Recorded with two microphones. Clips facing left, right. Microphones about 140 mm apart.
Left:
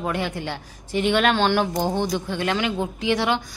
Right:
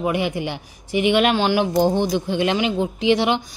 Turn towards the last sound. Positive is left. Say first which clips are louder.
# right 4 dB
turn(degrees=-20)  # may be behind; listen again after turning